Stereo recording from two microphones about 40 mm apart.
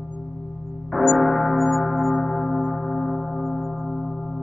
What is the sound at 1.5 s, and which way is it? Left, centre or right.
Church bell, centre.